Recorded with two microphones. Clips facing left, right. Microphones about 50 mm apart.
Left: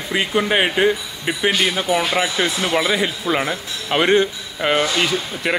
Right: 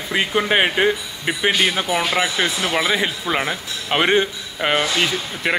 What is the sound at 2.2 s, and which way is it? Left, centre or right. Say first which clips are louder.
Speech: even; centre.